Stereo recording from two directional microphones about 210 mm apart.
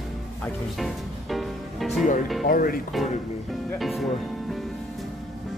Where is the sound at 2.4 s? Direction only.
45° left (ahead or behind).